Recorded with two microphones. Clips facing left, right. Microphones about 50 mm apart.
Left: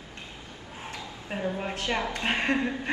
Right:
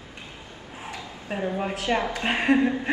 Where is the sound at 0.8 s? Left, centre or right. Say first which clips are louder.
Right 2 dB; centre.